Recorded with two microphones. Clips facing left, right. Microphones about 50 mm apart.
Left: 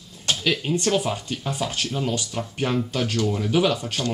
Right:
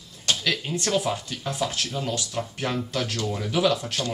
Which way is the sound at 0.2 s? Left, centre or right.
Centre.